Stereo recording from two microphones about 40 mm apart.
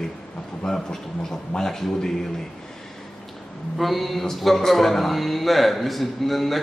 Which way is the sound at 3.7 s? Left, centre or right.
Centre.